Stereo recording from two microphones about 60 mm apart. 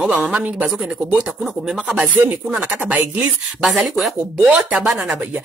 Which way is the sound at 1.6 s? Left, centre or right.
Centre.